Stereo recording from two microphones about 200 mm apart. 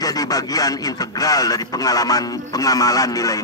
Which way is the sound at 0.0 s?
20° left (ahead or behind).